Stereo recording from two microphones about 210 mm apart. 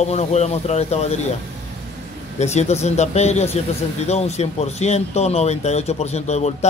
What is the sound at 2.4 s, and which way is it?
Speech, 30° left (ahead or behind).